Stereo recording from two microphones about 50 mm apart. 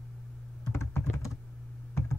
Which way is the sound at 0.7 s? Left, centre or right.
Left.